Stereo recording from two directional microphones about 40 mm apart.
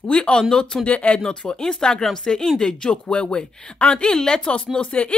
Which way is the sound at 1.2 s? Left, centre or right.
Left.